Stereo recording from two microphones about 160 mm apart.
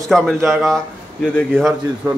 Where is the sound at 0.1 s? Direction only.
5° left (ahead or behind).